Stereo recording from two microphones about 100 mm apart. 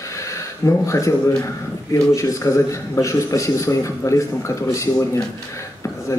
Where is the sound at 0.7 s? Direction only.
30° left (ahead or behind).